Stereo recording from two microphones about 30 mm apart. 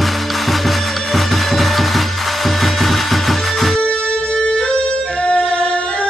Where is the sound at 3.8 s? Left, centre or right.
Left.